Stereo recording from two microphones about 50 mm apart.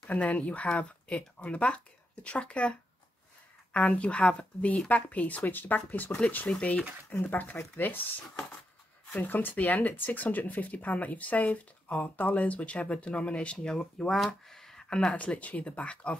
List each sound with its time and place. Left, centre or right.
0.0 s speech: left
7.1 s speech: left
9.2 s speech: left; by 14.1 s centre
14.1 s speech: centre
15.1 s speech: left